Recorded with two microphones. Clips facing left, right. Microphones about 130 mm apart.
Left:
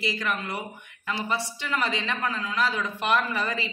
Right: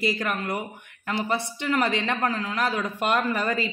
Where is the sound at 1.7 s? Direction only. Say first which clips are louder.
Right 3 dB; 50° right (ahead or behind).